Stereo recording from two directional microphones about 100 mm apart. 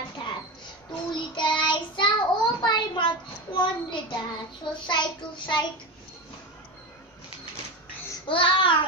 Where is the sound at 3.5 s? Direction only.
50° left (ahead or behind).